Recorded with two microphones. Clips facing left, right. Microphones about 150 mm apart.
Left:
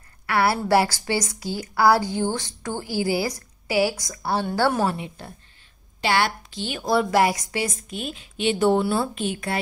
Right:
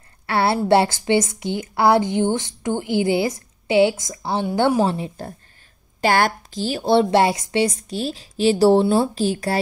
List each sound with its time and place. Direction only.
0.3 s a woman's voice: 25° right (ahead or behind)
4.8 s a woman's voice: 35° right (ahead or behind)